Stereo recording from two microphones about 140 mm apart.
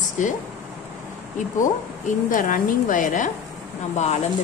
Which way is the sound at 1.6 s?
70° left (ahead or behind).